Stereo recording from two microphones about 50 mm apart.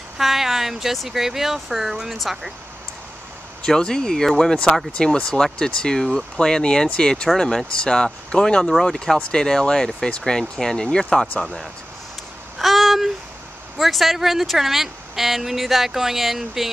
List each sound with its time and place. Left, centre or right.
0.2 s speech: centre
3.6 s speech: centre
11.4 s speech: centre
12.5 s a sound: centre
13.7 s speech: centre